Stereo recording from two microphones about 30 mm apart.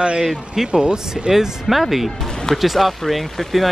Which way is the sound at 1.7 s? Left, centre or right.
Centre.